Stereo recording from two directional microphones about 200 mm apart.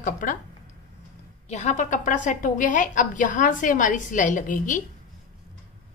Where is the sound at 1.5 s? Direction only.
35° left (ahead or behind).